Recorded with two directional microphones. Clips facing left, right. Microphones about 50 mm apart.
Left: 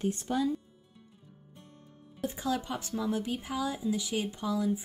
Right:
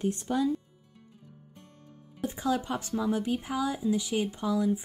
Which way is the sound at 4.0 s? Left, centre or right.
Centre.